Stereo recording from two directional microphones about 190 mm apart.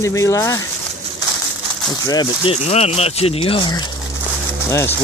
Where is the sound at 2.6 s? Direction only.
35° left (ahead or behind).